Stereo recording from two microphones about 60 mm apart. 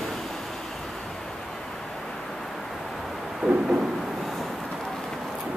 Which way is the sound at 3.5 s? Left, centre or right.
Centre.